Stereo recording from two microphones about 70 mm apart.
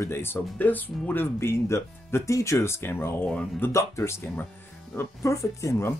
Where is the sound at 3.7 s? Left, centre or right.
Left.